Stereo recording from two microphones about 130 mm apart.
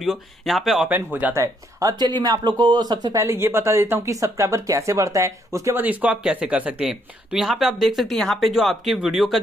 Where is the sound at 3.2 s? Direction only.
20° right (ahead or behind).